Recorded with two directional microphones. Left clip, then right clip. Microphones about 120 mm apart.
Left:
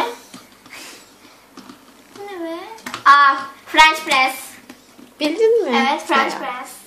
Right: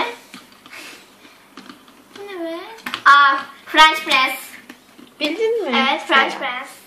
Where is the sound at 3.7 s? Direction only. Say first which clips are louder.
Even; 10° left (ahead or behind).